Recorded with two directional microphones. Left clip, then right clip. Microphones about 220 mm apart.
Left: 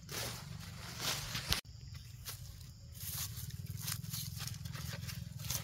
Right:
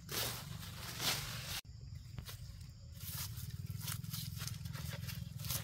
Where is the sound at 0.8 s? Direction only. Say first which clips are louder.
Right 1 dB; 25° right (ahead or behind).